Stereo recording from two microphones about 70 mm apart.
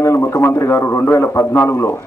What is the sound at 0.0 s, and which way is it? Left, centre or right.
A man's voice, left.